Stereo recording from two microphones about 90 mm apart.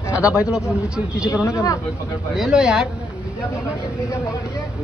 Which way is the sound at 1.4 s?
40° left (ahead or behind).